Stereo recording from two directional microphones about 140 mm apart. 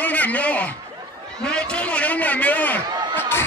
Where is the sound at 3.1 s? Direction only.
15° left (ahead or behind).